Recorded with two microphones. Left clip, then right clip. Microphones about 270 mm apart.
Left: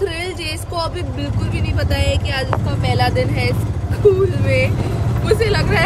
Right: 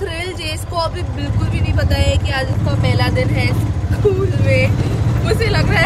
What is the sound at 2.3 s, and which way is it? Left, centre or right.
Speech, centre.